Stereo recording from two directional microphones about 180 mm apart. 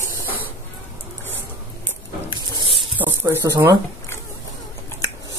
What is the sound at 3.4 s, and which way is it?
Speech, 15° right (ahead or behind).